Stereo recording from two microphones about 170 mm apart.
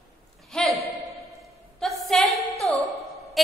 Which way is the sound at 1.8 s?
Centre (ahead or behind).